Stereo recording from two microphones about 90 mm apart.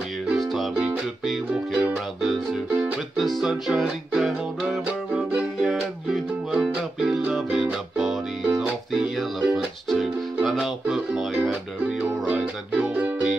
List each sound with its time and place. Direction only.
0.3 s music: centre (ahead or behind)
5.3 s music: 10° right (ahead or behind)
12.8 s music: 15° right (ahead or behind)